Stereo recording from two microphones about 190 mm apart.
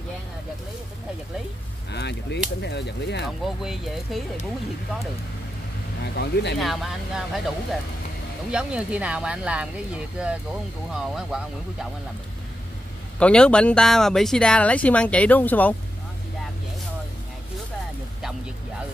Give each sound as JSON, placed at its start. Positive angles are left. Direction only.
{"t": 1.9, "sound": "speech", "side_deg": 60}
{"t": 3.4, "sound": "speech", "side_deg": 0}
{"t": 6.0, "sound": "speech", "side_deg": 60}
{"t": 6.6, "sound": "speech", "side_deg": 0}
{"t": 8.5, "sound": "speech", "side_deg": -5}
{"t": 13.2, "sound": "speech", "side_deg": 5}